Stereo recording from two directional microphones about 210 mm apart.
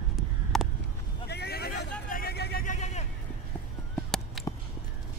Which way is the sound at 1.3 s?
50° left (ahead or behind).